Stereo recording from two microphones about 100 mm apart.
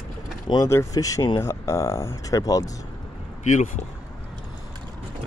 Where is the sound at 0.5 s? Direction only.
60° left (ahead or behind).